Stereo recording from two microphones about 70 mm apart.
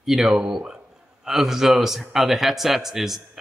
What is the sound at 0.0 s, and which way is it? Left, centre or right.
Speech, centre.